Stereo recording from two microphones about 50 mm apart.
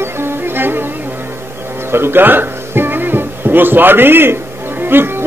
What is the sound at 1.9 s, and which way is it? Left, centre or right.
Music, right.